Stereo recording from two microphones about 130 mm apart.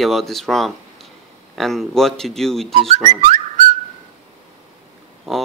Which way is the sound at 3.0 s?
35° right (ahead or behind).